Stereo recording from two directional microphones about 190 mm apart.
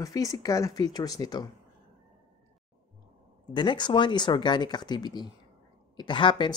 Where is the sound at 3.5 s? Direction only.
25° left (ahead or behind).